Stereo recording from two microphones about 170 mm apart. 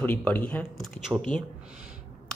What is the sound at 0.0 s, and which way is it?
A man's voice, 10° left (ahead or behind).